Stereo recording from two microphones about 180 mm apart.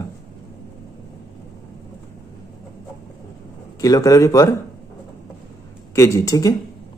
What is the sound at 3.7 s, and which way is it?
Speech, 20° left (ahead or behind).